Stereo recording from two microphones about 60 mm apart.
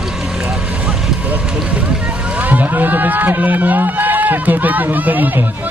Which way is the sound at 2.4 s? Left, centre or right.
Right.